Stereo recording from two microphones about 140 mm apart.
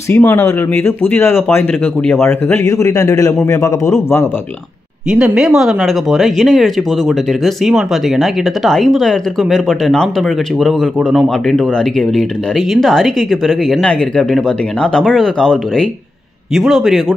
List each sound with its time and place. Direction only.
0.1 s a man's voice: 15° left (ahead or behind)
5.1 s speech: 5° right (ahead or behind)